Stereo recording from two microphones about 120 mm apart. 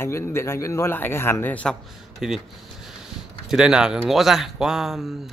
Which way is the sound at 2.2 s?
5° right (ahead or behind).